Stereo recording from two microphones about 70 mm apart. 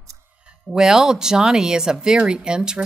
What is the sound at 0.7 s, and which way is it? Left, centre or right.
A woman's voice, centre.